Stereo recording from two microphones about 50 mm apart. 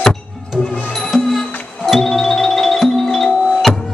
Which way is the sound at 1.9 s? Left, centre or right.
Centre.